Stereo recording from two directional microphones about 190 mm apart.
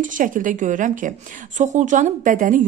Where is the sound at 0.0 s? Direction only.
45° right (ahead or behind).